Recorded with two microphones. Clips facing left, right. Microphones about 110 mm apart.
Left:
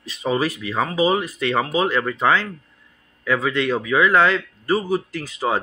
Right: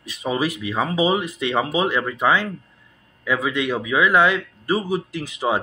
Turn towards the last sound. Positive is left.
turn(degrees=-15)  # may be behind; listen again after turning